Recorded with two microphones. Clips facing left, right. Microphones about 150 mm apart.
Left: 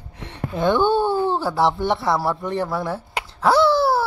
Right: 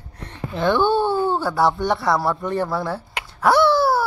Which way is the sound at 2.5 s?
20° left (ahead or behind).